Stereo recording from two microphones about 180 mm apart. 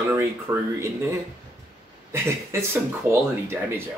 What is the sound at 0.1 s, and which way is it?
Speech, 15° right (ahead or behind).